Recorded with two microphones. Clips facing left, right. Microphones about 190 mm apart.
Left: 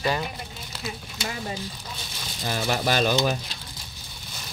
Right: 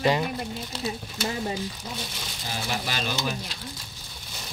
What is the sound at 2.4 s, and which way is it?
Speech, 55° left (ahead or behind).